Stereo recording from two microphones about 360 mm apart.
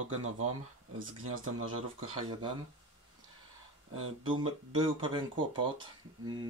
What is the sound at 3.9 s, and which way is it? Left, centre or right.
Speech, right.